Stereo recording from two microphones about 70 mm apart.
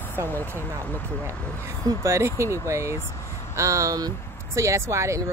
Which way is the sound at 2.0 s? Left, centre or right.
Right.